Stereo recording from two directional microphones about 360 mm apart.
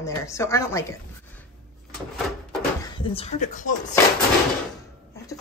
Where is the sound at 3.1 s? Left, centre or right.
Centre.